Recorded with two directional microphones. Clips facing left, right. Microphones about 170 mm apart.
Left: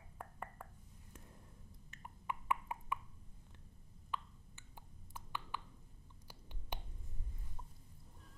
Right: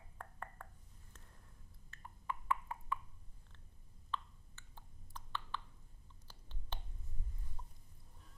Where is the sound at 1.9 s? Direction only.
20° left (ahead or behind).